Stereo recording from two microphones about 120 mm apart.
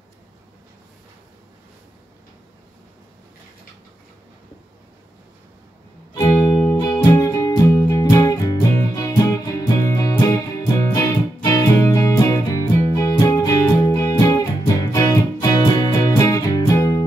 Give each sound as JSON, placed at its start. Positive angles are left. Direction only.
{"t": 6.1, "sound": "music", "side_deg": 30}
{"t": 11.4, "sound": "music", "side_deg": 30}